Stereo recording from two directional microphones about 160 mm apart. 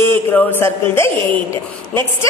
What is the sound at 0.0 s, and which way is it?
A man's voice, 15° left (ahead or behind).